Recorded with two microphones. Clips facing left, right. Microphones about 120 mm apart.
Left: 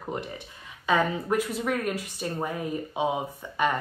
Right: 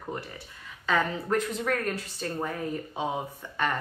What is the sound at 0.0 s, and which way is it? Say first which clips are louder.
Speech: left 3 dB; 20° left (ahead or behind).